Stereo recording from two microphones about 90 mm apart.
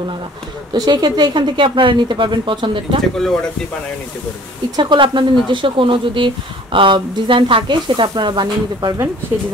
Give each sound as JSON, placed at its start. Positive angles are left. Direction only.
{"t": 0.7, "sound": "speech", "side_deg": -50}
{"t": 4.7, "sound": "speech", "side_deg": -60}